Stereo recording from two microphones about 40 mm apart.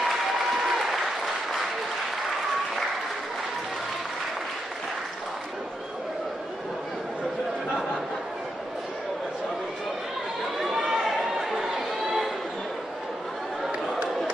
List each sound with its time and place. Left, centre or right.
0.0 s applause: centre
10.6 s run: centre